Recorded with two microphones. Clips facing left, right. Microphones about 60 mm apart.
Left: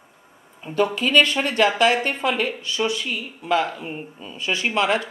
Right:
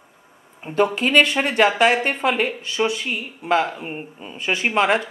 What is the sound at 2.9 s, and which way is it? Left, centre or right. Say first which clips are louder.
Speech: right 1 dB; right.